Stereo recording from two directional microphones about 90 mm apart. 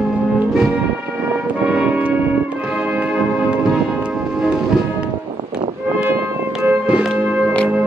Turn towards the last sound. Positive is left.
turn(degrees=-15)  # may be behind; listen again after turning